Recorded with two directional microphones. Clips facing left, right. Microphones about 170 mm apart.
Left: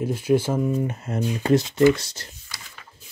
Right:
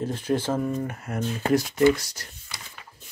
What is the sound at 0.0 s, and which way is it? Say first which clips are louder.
Speech: left 5 dB; 10° left (ahead or behind).